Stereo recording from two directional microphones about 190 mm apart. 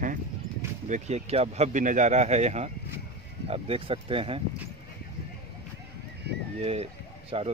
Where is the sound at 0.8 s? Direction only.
40° right (ahead or behind).